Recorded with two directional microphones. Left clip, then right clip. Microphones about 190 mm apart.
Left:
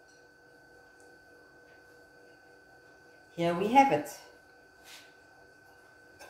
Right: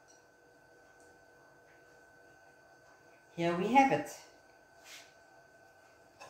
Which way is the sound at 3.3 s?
15° left (ahead or behind).